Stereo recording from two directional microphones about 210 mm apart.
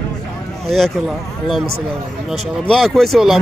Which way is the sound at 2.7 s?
Centre (ahead or behind).